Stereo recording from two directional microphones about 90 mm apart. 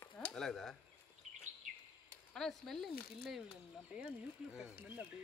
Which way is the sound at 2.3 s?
5° left (ahead or behind).